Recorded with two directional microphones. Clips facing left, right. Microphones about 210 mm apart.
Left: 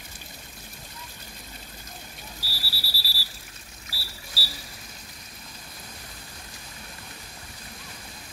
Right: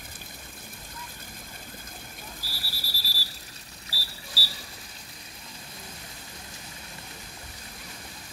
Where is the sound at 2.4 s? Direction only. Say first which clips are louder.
Left 1 dB; 50° right (ahead or behind).